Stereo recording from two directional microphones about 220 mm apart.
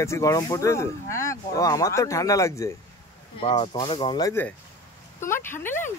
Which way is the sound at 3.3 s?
25° left (ahead or behind).